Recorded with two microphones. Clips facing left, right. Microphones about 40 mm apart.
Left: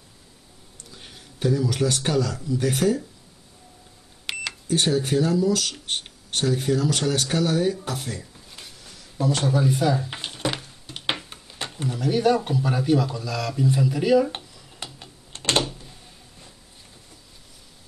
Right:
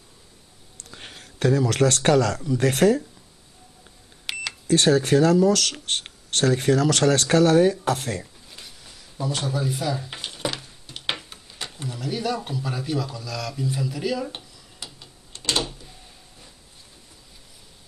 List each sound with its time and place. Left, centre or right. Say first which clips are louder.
0.9 s speech: right 4 dB; right
4.3 s cash register: even; centre
4.6 s speech: right 4 dB; right
9.5 s speech: left 6 dB; centre
11.0 s a sound: left 1 dB; centre
11.7 s speech: left 7 dB; centre
14.3 s a sound: left 3 dB; left